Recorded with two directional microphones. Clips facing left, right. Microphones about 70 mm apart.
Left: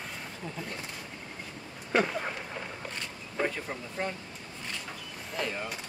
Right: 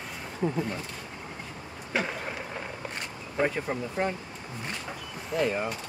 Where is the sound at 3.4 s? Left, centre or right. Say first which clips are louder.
Right 5 dB; centre.